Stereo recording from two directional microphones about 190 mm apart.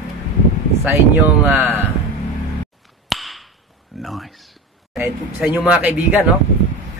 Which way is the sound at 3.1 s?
Centre (ahead or behind).